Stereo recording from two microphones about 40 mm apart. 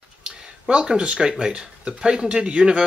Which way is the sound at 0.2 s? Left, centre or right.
Right.